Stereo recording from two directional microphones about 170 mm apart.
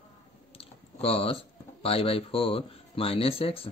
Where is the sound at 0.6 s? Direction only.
35° left (ahead or behind).